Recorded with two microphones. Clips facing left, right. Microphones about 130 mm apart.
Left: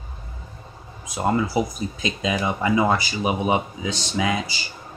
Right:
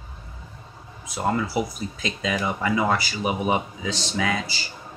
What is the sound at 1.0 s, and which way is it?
Speech, 20° left (ahead or behind).